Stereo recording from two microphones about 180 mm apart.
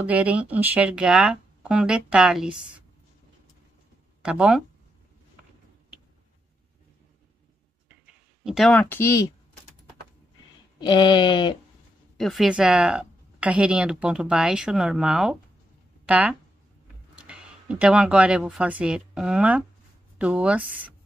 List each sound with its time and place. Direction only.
0.0 s speech: 10° right (ahead or behind)
4.2 s speech: 5° right (ahead or behind)
8.5 s speech: centre (ahead or behind); by 9.3 s 15° left (ahead or behind)
10.8 s speech: 25° left (ahead or behind)
12.2 s speech: centre (ahead or behind)